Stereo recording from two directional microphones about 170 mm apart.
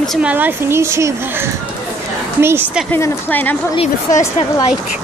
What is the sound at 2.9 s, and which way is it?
Speech, 10° left (ahead or behind).